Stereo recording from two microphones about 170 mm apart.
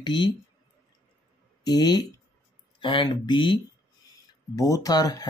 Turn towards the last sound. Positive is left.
turn(degrees=25)  # may be behind; listen again after turning